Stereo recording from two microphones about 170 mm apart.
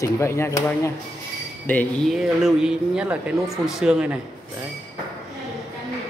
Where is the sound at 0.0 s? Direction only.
15° left (ahead or behind).